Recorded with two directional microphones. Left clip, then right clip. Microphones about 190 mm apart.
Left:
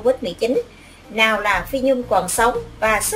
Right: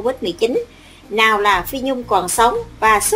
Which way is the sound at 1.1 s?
45° right (ahead or behind).